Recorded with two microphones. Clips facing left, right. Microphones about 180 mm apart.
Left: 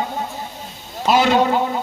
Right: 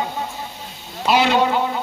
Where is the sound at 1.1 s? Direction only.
45° left (ahead or behind).